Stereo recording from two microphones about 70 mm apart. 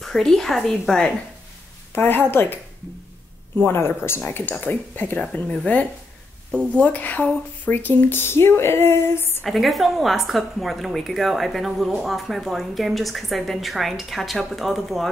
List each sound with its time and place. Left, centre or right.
0.0 s a woman's voice: centre
2.0 s speech: left
3.6 s speech: left; by 5.6 s centre
6.8 s speech: left
9.4 s a woman's voice: centre